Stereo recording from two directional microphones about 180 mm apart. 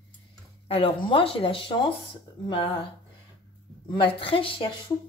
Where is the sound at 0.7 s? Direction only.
30° left (ahead or behind).